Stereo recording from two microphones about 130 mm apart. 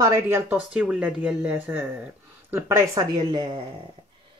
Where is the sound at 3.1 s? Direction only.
35° right (ahead or behind).